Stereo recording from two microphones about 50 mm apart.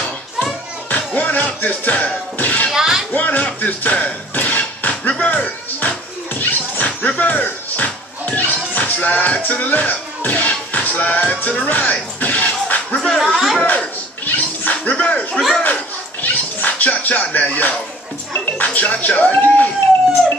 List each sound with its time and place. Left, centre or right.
0.8 s music: left
2.3 s a sound: left
2.7 s music: centre
3.1 s music: left
3.6 s a sound: left
5.2 s music: left
11.6 s speech: left
12.9 s speech: centre
13.6 s music: left
18.4 s speech: left